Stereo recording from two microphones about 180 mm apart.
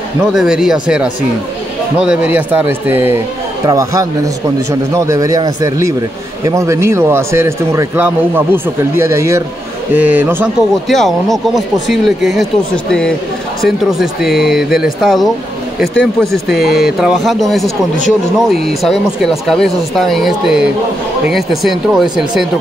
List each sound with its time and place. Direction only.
0.2 s a man's voice: 5° right (ahead or behind)
10.9 s speech: centre (ahead or behind)